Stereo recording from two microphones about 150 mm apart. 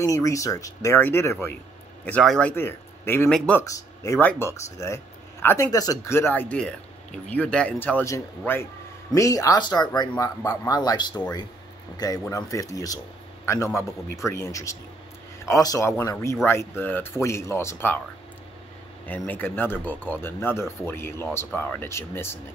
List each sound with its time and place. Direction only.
0.0 s speech: 20° left (ahead or behind)
3.6 s speech: 20° left (ahead or behind)
19.0 s speech: 10° left (ahead or behind)